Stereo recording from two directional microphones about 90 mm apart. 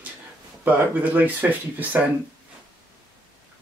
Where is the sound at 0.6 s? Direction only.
20° right (ahead or behind).